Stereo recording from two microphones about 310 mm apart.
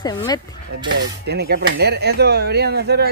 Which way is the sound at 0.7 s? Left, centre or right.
Right.